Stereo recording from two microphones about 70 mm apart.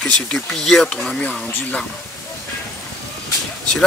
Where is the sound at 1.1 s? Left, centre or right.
Left.